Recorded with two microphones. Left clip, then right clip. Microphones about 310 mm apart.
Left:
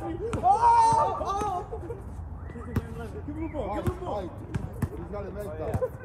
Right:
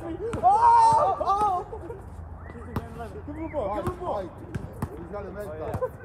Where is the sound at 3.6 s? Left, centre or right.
Centre.